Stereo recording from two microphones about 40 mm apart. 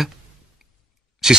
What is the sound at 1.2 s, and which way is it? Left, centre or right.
Speech, centre.